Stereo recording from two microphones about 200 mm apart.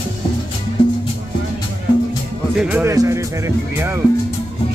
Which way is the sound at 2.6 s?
5° right (ahead or behind).